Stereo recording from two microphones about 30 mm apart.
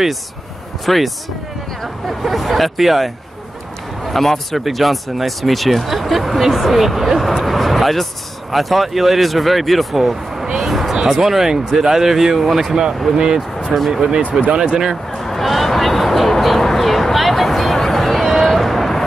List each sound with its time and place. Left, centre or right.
0.8 s speech: centre
4.1 s a man's voice: centre
7.2 s speech: centre
10.3 s vehicle: centre
10.7 s a sound: centre
11.1 s speech: centre
13.1 s speech: right
13.7 s speech: centre
15.1 s a sound: centre